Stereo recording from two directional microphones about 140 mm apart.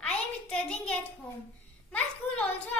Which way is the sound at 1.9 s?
10° left (ahead or behind).